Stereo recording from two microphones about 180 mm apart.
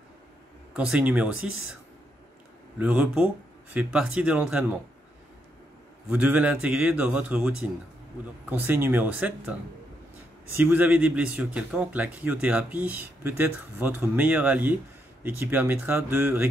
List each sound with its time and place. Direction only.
0.7 s a man's voice: 5° right (ahead or behind)
2.8 s a man's voice: 10° right (ahead or behind)
6.0 s a man's voice: 10° right (ahead or behind)